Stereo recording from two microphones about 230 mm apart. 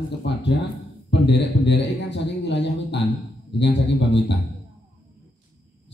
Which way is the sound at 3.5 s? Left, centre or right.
Left.